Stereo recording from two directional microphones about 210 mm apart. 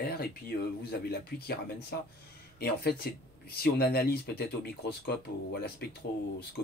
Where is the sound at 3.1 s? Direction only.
45° left (ahead or behind).